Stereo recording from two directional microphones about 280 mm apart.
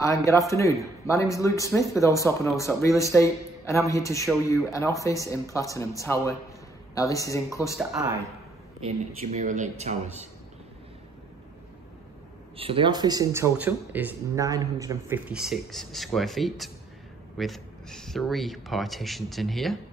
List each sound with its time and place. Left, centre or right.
0.0 s speech: centre
7.9 s speech: centre
8.8 s speech: right
12.5 s speech: centre